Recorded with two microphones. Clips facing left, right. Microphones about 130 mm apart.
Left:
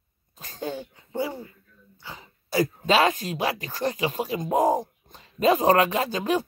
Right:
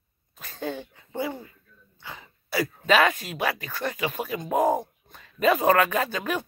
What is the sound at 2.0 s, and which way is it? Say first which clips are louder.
Speech: even; 35° left (ahead or behind).